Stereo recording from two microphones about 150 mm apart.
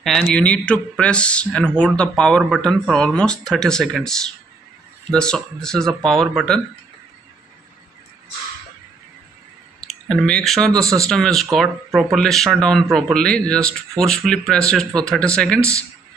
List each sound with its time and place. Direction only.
0.0 s a man's voice: 5° left (ahead or behind)
9.8 s speech: 5° left (ahead or behind)
10.8 s speech: 20° right (ahead or behind)
11.1 s a man's voice: 5° left (ahead or behind)